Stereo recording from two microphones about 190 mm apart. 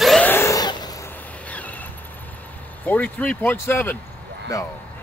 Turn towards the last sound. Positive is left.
turn(degrees=15)  # may be behind; listen again after turning